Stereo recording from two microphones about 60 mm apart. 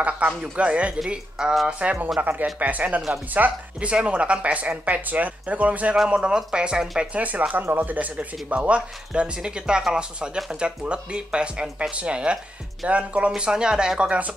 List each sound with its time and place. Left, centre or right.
0.6 s speech: centre
3.9 s speech: centre
7.0 s speech: right